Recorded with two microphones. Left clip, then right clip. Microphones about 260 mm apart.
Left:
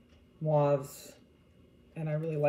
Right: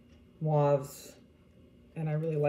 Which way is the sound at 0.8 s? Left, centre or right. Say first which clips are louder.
Right 1 dB; right.